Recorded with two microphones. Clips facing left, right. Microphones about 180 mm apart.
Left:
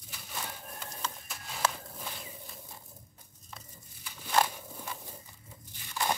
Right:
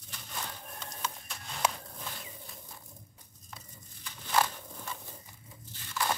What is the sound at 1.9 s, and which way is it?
Walk, 5° left (ahead or behind).